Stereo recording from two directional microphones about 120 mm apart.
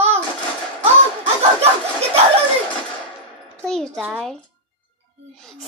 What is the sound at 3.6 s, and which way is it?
Speech, 5° left (ahead or behind).